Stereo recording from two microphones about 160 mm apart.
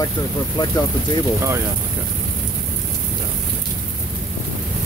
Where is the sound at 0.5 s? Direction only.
25° left (ahead or behind).